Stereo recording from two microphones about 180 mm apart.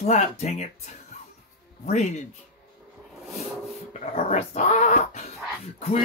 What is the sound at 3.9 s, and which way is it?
Speech, 40° left (ahead or behind).